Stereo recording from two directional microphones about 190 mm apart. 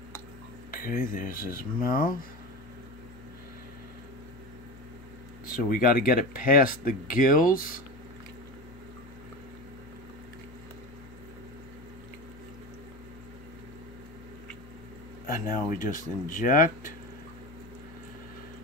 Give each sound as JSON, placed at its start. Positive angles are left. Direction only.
{"t": 0.7, "sound": "speech", "side_deg": 50}
{"t": 5.5, "sound": "speech", "side_deg": 50}
{"t": 15.2, "sound": "speech", "side_deg": 45}